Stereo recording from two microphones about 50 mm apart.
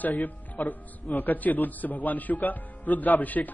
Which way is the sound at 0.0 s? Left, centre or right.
Left.